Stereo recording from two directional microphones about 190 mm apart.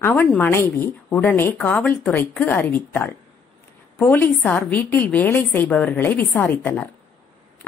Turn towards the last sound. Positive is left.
turn(degrees=10)  # may be behind; listen again after turning